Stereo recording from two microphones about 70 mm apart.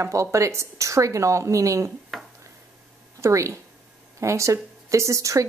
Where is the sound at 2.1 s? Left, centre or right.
Centre.